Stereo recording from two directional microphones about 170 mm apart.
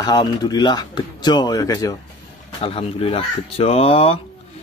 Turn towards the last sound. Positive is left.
turn(degrees=35)  # may be behind; listen again after turning